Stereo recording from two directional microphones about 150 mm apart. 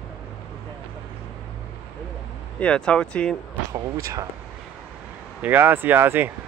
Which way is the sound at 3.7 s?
20° right (ahead or behind).